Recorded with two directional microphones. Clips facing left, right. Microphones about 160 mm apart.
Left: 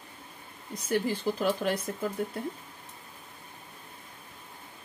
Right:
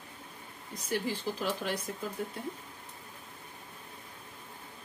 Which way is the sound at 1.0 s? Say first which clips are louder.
Left 5 dB; 55° left (ahead or behind).